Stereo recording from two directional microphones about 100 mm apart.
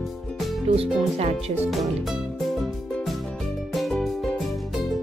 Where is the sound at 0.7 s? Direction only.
90° right.